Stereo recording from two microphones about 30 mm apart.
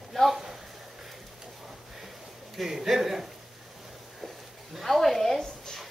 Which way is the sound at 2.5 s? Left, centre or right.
Centre.